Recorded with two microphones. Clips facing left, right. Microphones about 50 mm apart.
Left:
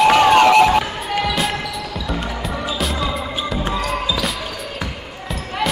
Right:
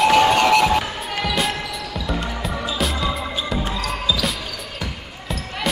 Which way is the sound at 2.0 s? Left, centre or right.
Centre.